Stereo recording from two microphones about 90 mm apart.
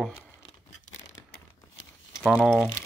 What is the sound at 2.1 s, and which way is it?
Speech, 5° right (ahead or behind).